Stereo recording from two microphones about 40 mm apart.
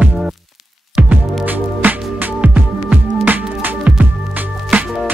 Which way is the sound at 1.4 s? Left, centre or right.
Right.